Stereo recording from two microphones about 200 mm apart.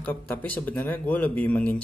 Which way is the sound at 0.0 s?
10° left (ahead or behind).